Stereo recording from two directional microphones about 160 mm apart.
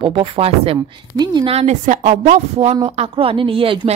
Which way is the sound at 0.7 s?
25° right (ahead or behind).